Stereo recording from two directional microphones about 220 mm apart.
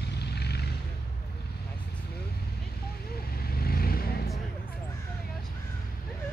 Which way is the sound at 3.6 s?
45° left (ahead or behind).